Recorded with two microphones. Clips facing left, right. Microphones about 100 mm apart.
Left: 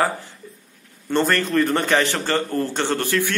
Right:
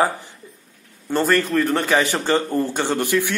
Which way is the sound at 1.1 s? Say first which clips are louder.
Right 1 dB; 5° right (ahead or behind).